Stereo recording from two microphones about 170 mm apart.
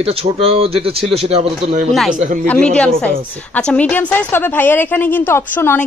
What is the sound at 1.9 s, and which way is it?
A woman's voice, centre (ahead or behind).